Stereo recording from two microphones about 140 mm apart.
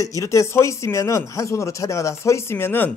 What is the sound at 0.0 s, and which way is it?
Speech, 25° left (ahead or behind).